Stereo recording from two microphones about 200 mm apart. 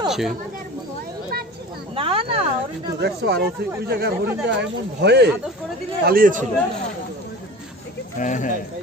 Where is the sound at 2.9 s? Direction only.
55° right (ahead or behind).